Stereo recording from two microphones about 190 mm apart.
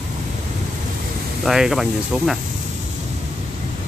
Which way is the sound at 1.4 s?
Centre (ahead or behind).